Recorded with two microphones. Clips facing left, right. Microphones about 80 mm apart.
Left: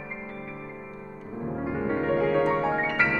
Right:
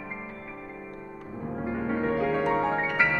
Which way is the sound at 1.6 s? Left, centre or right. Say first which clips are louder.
Left 1 dB; centre.